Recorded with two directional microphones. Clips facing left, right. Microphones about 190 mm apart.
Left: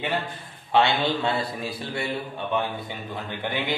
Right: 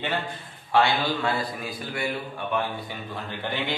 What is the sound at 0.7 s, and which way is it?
A man's voice, 20° left (ahead or behind).